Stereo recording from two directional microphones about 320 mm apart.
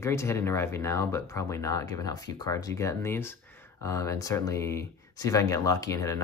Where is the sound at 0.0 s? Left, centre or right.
Centre.